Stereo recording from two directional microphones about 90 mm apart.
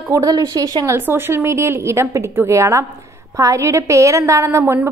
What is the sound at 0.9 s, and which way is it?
A woman's voice, 25° right (ahead or behind).